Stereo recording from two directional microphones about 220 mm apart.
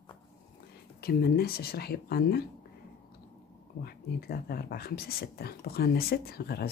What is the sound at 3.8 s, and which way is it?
Speech, 45° left (ahead or behind).